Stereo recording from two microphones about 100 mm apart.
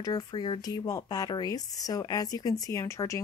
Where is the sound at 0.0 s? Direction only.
45° left (ahead or behind).